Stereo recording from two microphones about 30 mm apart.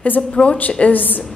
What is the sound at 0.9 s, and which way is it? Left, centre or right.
Speech, left.